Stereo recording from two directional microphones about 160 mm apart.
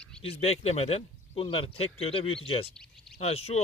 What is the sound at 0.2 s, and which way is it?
Speech, 40° left (ahead or behind).